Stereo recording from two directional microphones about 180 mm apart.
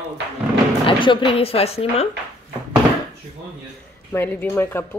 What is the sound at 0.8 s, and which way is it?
Speech, 30° left (ahead or behind).